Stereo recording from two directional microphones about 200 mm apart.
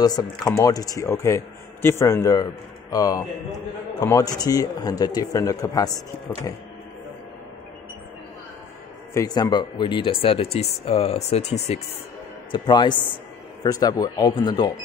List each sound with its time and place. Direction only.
0.0 s speech: 20° left (ahead or behind)
9.1 s speech: 20° left (ahead or behind)